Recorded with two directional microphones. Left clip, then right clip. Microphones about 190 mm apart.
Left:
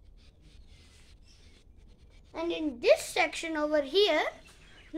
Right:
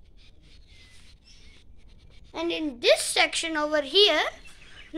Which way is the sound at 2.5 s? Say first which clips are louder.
Right 3 dB; 10° right (ahead or behind).